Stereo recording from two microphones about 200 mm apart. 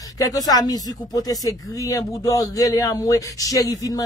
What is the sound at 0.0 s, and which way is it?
Speech, 15° left (ahead or behind).